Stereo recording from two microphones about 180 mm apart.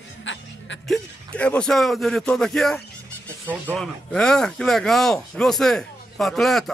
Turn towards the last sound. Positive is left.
turn(degrees=0)  # may be behind; listen again after turning